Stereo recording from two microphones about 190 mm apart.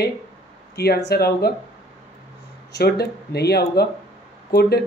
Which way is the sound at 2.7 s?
60° left (ahead or behind).